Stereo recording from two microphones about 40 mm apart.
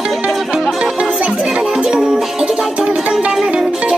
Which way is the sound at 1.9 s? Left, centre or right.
Centre.